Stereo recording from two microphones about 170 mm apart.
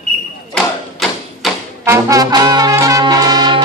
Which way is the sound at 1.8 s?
15° right (ahead or behind).